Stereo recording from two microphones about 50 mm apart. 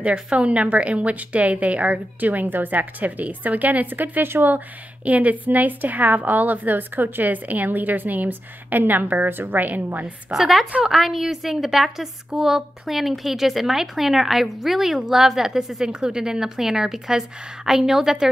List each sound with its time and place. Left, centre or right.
0.0 s a woman's voice: right
5.0 s a woman's voice: right
10.3 s a woman's voice: centre